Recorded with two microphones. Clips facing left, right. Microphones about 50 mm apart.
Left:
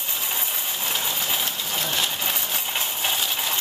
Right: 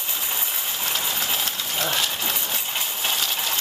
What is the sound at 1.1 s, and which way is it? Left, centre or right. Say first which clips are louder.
Train: even; centre.